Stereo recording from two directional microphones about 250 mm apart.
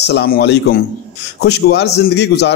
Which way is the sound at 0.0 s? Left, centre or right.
Left.